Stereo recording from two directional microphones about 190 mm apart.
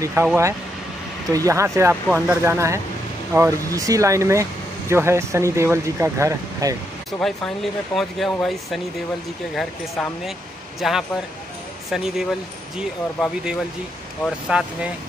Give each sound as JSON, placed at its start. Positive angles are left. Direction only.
{"t": 0.0, "sound": "speech", "side_deg": -10}
{"t": 7.1, "sound": "speech", "side_deg": 0}